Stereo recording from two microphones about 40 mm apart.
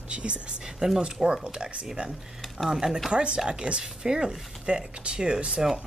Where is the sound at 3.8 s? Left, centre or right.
Centre.